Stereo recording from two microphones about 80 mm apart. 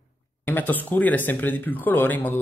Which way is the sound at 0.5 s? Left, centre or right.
Left.